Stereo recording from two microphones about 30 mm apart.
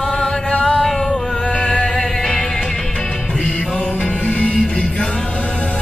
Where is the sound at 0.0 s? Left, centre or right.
Left.